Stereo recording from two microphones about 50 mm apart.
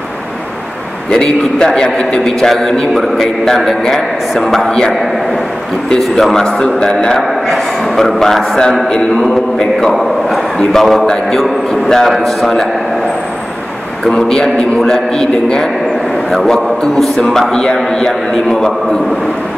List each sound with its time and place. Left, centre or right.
1.1 s a man's voice: centre
5.9 s a man's voice: centre
6.4 s a man's voice: centre
7.2 s a man's voice: centre
14.0 s a man's voice: centre